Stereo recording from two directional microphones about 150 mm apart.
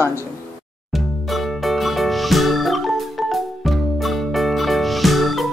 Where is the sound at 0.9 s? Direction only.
Centre (ahead or behind).